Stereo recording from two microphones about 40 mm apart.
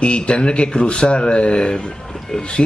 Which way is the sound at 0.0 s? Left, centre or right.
Left.